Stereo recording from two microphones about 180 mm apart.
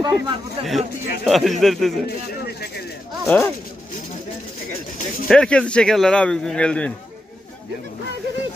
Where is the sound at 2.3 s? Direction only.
65° left (ahead or behind).